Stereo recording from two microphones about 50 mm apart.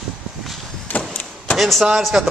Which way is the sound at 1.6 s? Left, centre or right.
Centre.